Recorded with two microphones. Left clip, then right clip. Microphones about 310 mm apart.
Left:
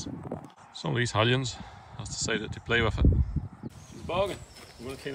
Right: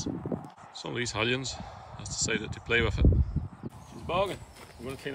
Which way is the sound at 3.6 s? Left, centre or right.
Left.